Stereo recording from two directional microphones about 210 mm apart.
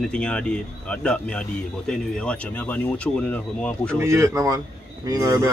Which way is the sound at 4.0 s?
15° right (ahead or behind).